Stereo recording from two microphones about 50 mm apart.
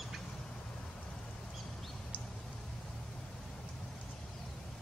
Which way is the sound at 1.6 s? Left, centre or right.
Centre.